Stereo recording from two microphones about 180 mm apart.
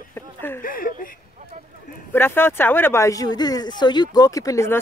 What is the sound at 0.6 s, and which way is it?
Speech, 50° left (ahead or behind).